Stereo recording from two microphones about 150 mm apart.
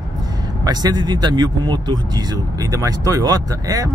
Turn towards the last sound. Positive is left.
turn(degrees=-25)  # may be behind; listen again after turning